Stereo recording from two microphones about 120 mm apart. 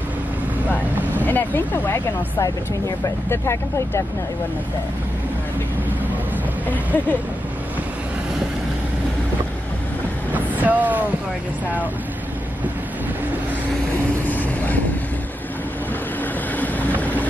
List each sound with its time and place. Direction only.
0.7 s vehicle: 15° left (ahead or behind)
3.3 s speech: 20° left (ahead or behind)
6.7 s a sound: 15° left (ahead or behind)
10.3 s vehicle: 15° right (ahead or behind)
16.5 s vehicle: 15° left (ahead or behind)